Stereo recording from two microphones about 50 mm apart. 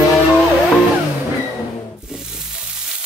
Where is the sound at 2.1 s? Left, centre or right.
Centre.